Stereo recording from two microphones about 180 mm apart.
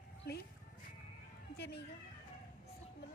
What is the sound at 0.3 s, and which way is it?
Speech, 60° left (ahead or behind).